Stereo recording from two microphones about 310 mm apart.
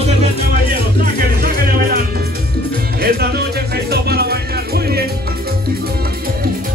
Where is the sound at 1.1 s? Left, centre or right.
Right.